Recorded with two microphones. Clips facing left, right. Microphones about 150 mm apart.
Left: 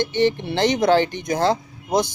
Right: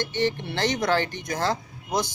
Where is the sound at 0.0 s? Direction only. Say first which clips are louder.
Left 6 dB; 20° left (ahead or behind).